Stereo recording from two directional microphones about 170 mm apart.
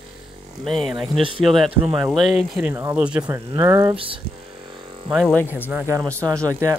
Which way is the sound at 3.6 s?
20° right (ahead or behind).